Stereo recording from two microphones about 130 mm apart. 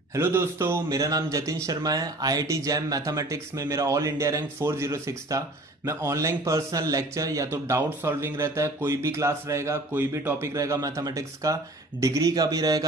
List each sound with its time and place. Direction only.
0.1 s speech: 20° right (ahead or behind)